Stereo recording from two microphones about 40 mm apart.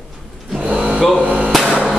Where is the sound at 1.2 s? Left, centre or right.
Right.